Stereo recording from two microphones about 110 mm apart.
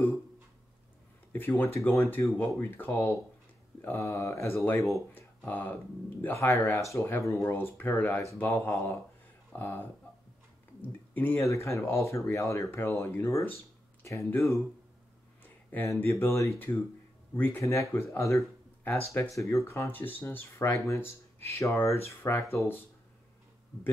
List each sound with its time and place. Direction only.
1.3 s speech: 20° left (ahead or behind)
4.0 s speech: 25° left (ahead or behind)
5.1 s speech: 15° left (ahead or behind)
15.4 s a sound: 15° left (ahead or behind)
16.0 s speech: 20° left (ahead or behind)